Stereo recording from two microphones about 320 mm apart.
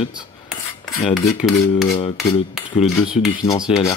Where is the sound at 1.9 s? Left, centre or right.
Centre.